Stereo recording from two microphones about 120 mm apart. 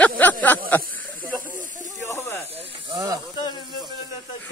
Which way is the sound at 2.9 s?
35° right (ahead or behind).